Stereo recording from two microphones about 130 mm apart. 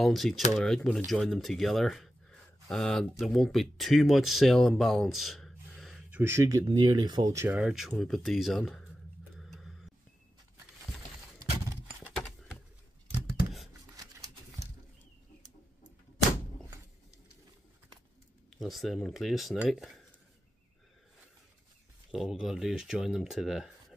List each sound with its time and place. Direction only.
0.0 s speech: centre (ahead or behind); by 7.3 s 35° right (ahead or behind)
7.3 s speech: 10° right (ahead or behind)
9.4 s a sound: centre (ahead or behind)
13.9 s a sound: 30° right (ahead or behind)
18.5 s speech: centre (ahead or behind)
22.1 s speech: 5° right (ahead or behind)